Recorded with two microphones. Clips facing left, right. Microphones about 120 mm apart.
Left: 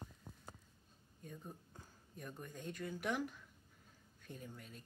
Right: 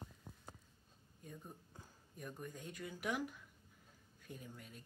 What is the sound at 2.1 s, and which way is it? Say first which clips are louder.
Speech: right 1 dB; 5° right (ahead or behind).